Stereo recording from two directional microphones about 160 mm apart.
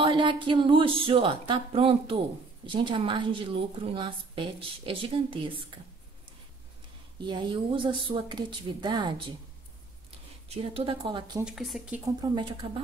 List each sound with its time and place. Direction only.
0.0 s speech: 30° right (ahead or behind)
7.2 s speech: 30° right (ahead or behind)
10.5 s speech: 35° right (ahead or behind)
11.4 s speech: centre (ahead or behind)
12.2 s speech: 30° right (ahead or behind)